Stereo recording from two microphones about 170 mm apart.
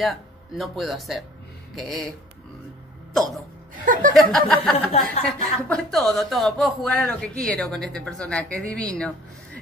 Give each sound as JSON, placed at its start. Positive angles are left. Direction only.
{"t": 0.0, "sound": "a man's voice", "side_deg": 0}
{"t": 3.8, "sound": "chuckle", "side_deg": -55}
{"t": 4.1, "sound": "a man's voice", "side_deg": 0}